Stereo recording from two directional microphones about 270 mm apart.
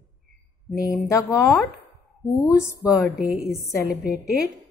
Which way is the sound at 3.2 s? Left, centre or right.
Left.